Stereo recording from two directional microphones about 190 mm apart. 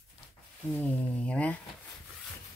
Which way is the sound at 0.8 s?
10° left (ahead or behind).